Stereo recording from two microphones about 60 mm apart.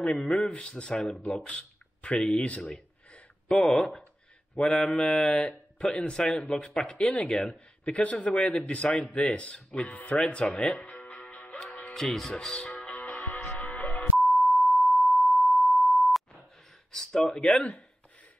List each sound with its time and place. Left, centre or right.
0.0 s speech: centre
3.1 s a sound: centre
4.6 s speech: centre
10.2 s music: centre
11.9 s speech: centre
12.9 s music: left
14.2 s dial tone: centre
16.9 s speech: centre